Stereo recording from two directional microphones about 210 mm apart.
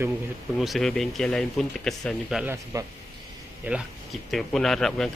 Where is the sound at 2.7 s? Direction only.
15° right (ahead or behind).